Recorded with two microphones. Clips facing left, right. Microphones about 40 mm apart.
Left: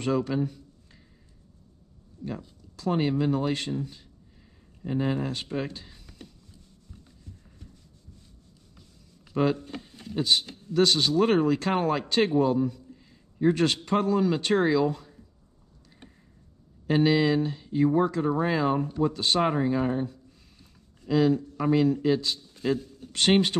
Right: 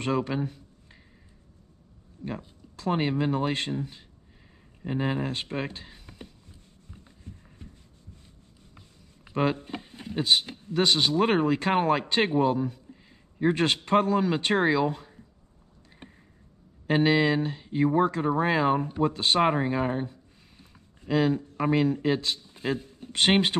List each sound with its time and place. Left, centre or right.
0.0 s speech: right
2.2 s speech: right
6.9 s a sound: right
9.3 s speech: right
16.8 s speech: right